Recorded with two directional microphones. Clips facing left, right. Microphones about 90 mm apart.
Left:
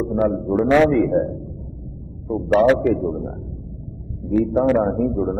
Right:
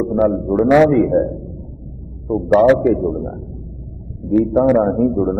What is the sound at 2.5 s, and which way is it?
A man's voice, 15° right (ahead or behind).